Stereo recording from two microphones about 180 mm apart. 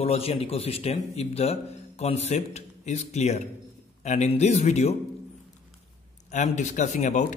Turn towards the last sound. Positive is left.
turn(degrees=40)  # may be behind; listen again after turning